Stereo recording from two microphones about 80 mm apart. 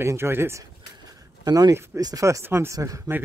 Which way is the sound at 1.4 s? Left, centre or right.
Right.